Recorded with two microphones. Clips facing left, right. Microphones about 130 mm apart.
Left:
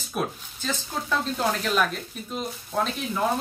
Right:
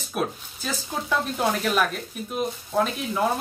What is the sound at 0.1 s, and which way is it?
A woman's voice, 10° right (ahead or behind).